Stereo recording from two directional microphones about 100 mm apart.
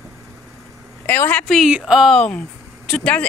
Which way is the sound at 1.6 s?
5° right (ahead or behind).